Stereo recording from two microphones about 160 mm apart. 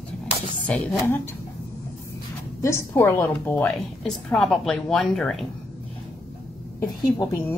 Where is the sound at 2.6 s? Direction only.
15° left (ahead or behind); by 5.4 s centre (ahead or behind).